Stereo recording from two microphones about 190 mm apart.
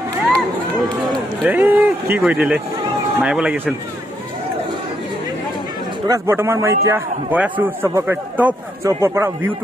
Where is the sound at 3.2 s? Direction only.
5° right (ahead or behind).